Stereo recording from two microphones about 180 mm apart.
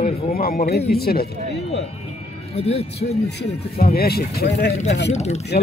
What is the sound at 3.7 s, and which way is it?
Speech, 55° left (ahead or behind).